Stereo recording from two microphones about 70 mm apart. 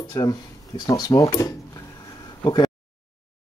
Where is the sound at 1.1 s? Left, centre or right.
Left.